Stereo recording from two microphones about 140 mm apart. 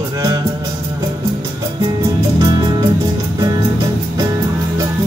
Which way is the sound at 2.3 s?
30° right (ahead or behind).